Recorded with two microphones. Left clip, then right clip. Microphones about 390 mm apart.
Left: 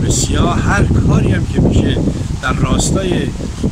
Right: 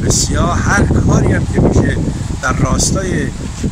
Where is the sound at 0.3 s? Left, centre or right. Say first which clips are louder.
Left 1 dB; centre.